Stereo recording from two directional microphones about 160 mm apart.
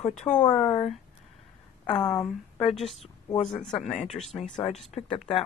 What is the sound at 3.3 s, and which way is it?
Speech, 40° left (ahead or behind).